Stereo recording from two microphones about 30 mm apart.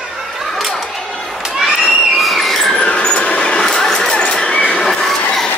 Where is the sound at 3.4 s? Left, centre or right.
Left.